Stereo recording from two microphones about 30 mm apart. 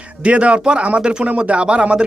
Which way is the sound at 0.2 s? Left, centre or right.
Right.